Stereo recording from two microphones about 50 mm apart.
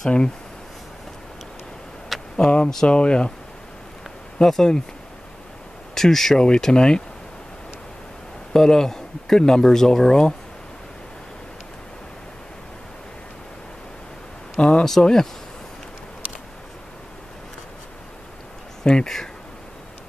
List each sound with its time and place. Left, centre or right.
2.3 s speech: centre
4.4 s speech: centre
5.9 s speech: centre
8.5 s speech: centre
14.6 s speech: centre
14.9 s speech: centre
18.9 s speech: centre